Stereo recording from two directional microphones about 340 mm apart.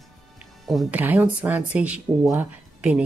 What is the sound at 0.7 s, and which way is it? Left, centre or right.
Speech, centre.